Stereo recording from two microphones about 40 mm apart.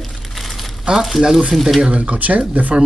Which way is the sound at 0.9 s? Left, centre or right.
Centre.